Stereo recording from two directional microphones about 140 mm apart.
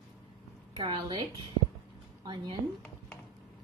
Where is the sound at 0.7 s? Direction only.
35° right (ahead or behind).